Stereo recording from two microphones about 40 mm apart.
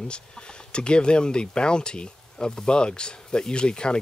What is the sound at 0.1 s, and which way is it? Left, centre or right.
Speech, left.